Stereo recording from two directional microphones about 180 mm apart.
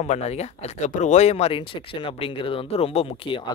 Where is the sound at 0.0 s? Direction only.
35° left (ahead or behind).